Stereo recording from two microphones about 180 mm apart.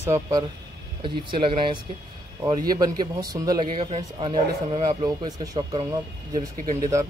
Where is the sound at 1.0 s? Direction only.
30° right (ahead or behind).